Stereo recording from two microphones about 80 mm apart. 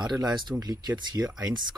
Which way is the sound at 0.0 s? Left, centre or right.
Right.